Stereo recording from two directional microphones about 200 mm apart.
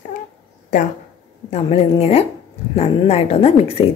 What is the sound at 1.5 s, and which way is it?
A woman's voice, 30° left (ahead or behind).